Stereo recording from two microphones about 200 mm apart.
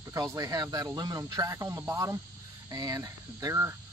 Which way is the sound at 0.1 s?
15° right (ahead or behind).